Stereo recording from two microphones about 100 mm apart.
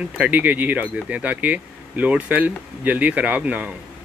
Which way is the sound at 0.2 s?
15° right (ahead or behind).